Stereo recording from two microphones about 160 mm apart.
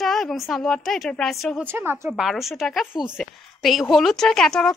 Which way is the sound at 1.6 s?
15° right (ahead or behind).